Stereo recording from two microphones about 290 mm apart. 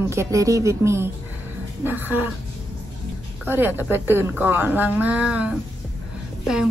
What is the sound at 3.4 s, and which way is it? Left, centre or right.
A woman's voice, centre.